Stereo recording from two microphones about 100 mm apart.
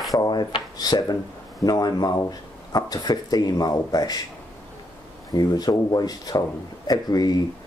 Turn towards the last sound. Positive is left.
turn(degrees=40)  # may be behind; listen again after turning